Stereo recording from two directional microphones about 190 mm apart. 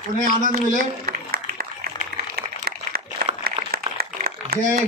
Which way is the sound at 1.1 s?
55° right (ahead or behind).